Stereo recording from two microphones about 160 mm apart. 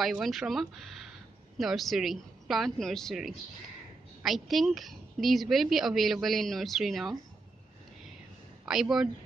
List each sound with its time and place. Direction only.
0.0 s a woman's voice: centre (ahead or behind)
8.6 s a woman's voice: 5° right (ahead or behind)